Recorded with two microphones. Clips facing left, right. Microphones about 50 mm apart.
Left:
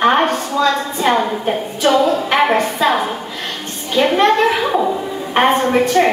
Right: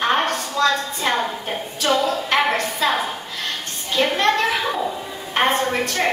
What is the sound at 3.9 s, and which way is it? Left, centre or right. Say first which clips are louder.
Speech: left 5 dB; centre.